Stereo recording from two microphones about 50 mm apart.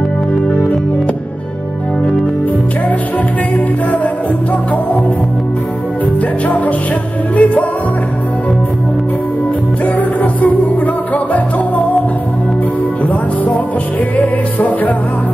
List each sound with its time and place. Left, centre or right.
3.5 s music: left
6.4 s music: left
9.9 s music: left
13.0 s music: left